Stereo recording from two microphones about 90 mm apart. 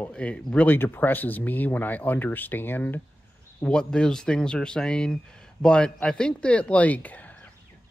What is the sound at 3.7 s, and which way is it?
Speech, 10° left (ahead or behind).